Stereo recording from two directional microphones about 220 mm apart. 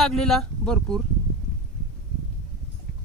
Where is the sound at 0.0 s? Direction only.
Centre (ahead or behind).